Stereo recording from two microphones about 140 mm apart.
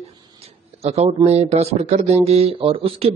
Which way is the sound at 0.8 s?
50° right (ahead or behind).